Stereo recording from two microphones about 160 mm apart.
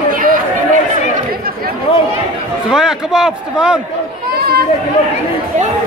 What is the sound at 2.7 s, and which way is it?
A man's voice, 5° right (ahead or behind).